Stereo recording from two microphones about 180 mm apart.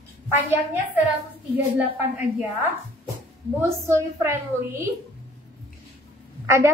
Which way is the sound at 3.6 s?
15° right (ahead or behind).